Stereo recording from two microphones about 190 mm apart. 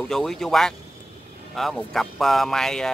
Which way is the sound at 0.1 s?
Centre (ahead or behind).